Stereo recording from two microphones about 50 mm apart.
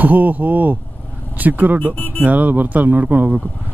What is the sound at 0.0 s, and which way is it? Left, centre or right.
Speech, right.